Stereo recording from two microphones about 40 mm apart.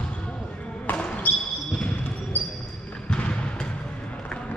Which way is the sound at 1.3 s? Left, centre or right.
Left.